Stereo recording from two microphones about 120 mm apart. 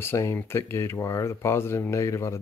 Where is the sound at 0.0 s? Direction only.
20° left (ahead or behind).